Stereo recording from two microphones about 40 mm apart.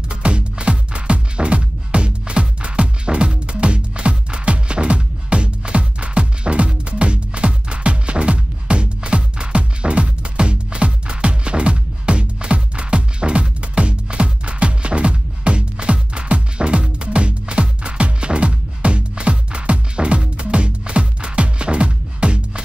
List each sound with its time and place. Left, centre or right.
0.1 s music: right